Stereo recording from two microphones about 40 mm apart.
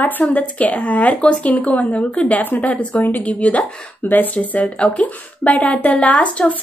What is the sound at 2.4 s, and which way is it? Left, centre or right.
Speech, left.